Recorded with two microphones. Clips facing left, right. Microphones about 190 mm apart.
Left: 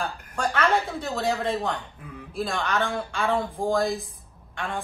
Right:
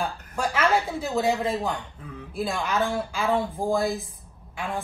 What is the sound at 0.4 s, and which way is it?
A woman's voice, 5° right (ahead or behind).